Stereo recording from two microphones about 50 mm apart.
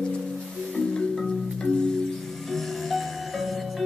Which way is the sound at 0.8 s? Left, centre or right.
Centre.